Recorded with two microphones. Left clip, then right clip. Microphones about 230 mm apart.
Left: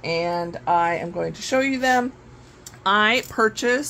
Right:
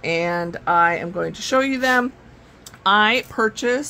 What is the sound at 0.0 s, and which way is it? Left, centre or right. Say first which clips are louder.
Speech: right 2 dB; right.